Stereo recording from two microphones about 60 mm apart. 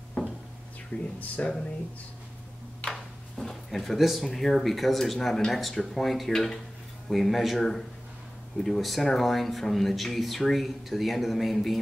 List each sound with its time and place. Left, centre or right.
0.9 s speech: left
1.4 s speech: left
2.9 s speech: centre